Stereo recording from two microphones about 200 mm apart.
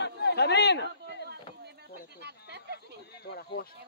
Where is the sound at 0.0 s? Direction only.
55° left (ahead or behind).